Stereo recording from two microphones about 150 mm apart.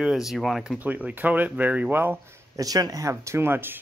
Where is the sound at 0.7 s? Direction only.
10° right (ahead or behind).